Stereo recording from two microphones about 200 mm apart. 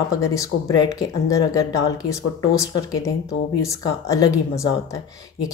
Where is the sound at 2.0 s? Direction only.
15° left (ahead or behind).